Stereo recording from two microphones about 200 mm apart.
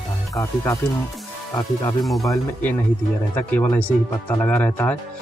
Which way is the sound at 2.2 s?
10° left (ahead or behind).